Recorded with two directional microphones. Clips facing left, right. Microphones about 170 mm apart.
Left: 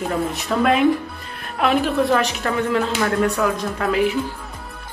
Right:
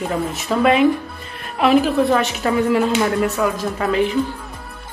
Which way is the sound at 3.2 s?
Centre (ahead or behind).